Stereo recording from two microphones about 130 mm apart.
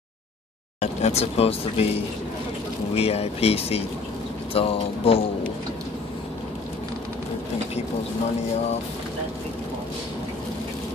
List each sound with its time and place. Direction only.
0.7 s speech: 55° left (ahead or behind)
2.9 s speech: 50° left (ahead or behind)